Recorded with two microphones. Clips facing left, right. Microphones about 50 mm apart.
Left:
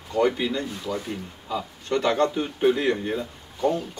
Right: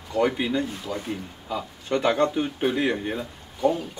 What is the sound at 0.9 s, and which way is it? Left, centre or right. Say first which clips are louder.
Speech: left 2 dB; centre.